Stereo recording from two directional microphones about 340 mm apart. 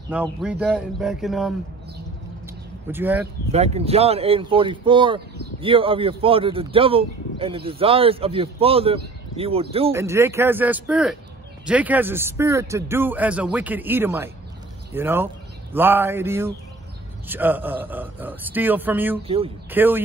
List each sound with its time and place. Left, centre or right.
0.1 s a man's voice: centre
2.9 s a man's voice: centre
3.5 s a man's voice: centre
19.2 s speech: centre
19.7 s a man's voice: centre